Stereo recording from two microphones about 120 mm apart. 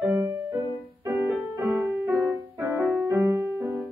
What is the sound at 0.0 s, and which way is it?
Music, 20° right (ahead or behind).